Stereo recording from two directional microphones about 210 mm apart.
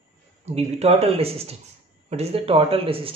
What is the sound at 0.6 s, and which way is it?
Speech, 30° right (ahead or behind).